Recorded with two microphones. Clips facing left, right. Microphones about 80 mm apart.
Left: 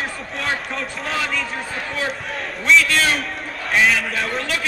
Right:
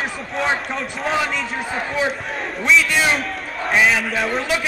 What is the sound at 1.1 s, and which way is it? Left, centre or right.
Speech, centre.